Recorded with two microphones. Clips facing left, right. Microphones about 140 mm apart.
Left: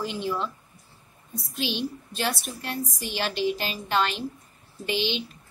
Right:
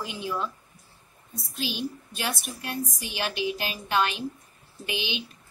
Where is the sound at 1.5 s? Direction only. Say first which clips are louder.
Left 2 dB; 5° right (ahead or behind).